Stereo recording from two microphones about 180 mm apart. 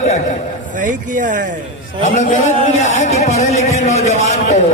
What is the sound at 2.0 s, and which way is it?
Speech, 40° left (ahead or behind).